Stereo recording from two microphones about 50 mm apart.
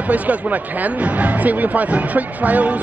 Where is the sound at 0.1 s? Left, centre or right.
Right.